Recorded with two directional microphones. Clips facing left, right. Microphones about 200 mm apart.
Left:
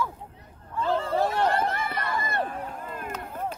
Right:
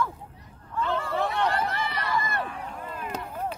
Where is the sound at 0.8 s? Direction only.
35° left (ahead or behind).